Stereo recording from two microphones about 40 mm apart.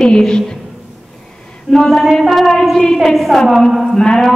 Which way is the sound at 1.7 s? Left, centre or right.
Centre.